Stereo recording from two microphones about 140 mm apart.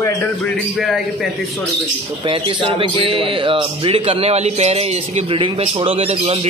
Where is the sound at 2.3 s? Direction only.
40° right (ahead or behind).